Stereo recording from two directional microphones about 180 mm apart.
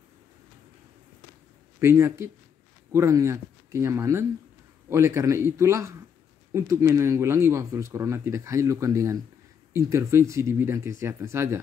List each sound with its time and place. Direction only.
1.8 s speech: 15° right (ahead or behind)